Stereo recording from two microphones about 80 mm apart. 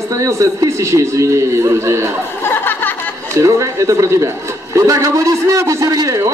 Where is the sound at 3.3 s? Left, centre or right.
Right.